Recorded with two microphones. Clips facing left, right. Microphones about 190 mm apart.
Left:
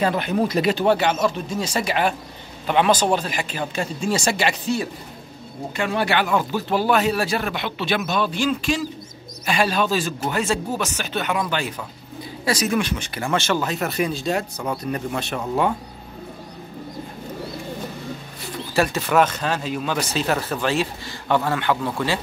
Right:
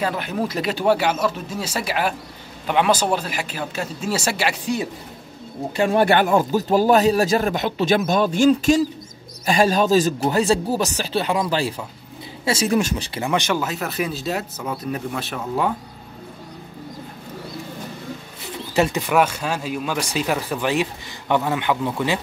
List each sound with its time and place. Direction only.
0.0 s speech: 5° right (ahead or behind)
5.8 s speech: 45° right (ahead or behind)
13.2 s speech: 15° right (ahead or behind)
18.8 s speech: 15° right (ahead or behind)